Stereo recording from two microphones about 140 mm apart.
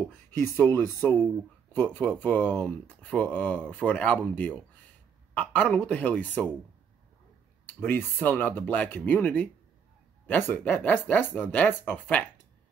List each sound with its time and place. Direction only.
0.4 s speech: 15° left (ahead or behind)
5.3 s speech: 10° left (ahead or behind)
7.6 s speech: 15° left (ahead or behind)